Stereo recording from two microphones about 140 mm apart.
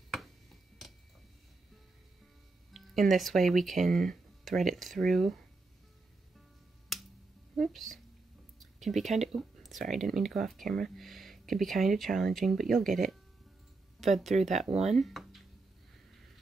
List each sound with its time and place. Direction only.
2.7 s speech: centre (ahead or behind)
6.9 s finger snapping: centre (ahead or behind)
7.5 s speech: centre (ahead or behind)
15.0 s a sound: centre (ahead or behind)